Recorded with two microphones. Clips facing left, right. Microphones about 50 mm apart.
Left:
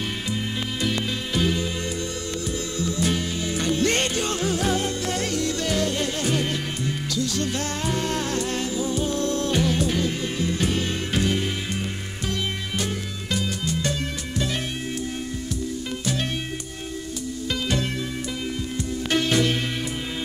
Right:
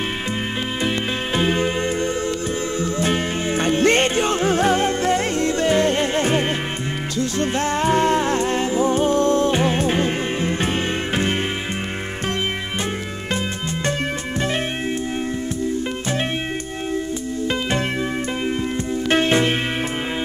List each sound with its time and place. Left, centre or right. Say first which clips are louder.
0.8 s music: right 3 dB; right
2.8 s music: right 2 dB; right
19.0 s music: right 4 dB; right